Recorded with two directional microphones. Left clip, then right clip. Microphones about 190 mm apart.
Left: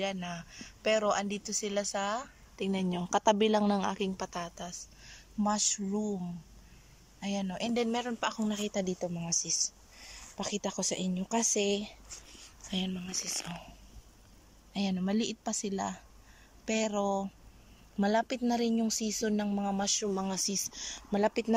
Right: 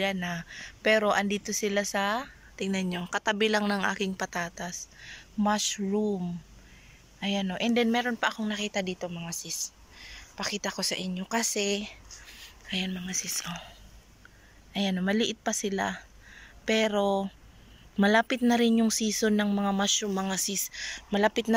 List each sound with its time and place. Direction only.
0.0 s a woman's voice: 5° left (ahead or behind)
14.7 s speech: 5° left (ahead or behind)